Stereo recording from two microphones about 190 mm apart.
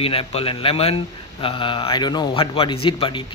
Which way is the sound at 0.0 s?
30° left (ahead or behind).